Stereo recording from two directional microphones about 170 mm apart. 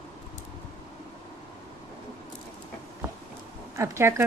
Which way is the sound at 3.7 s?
15° right (ahead or behind).